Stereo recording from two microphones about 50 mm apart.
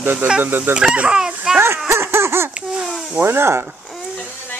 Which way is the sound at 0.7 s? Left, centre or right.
Right.